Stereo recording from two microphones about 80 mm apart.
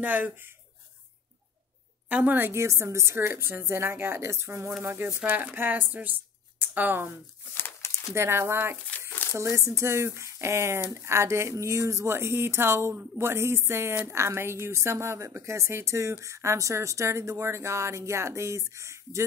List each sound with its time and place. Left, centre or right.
0.0 s speech: right
2.0 s a woman's voice: right
7.5 s crumpling: left
8.1 s a woman's voice: right